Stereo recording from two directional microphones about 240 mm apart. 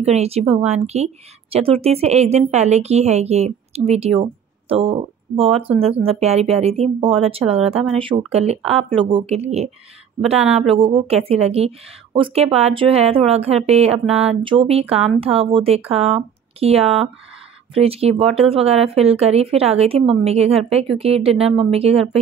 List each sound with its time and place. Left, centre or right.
0.0 s speech: right